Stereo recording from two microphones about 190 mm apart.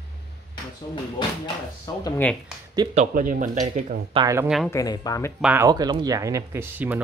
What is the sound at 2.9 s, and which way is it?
Speech, 45° right (ahead or behind).